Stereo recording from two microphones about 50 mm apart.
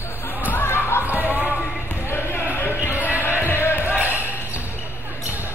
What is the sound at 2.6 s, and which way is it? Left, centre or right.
Music, left.